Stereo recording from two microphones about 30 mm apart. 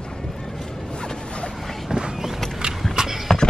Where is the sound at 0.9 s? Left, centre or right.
Left.